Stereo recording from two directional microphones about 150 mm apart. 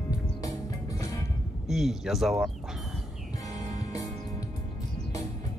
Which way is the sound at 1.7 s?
Centre (ahead or behind).